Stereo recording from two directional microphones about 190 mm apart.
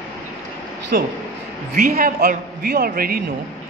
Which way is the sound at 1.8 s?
50° right (ahead or behind).